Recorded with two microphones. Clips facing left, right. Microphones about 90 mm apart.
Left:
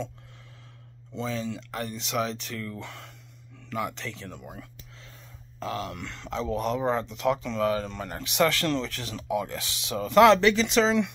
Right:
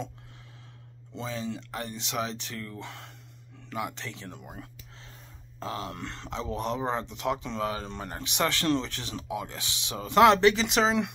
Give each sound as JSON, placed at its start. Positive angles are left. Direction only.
{"t": 1.1, "sound": "speech", "side_deg": -20}